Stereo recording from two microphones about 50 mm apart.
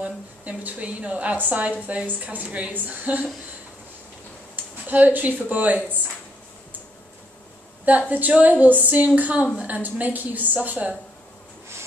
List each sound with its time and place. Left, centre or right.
0.0 s a woman's voice: right
4.8 s a woman's voice: right
8.1 s a woman's voice: right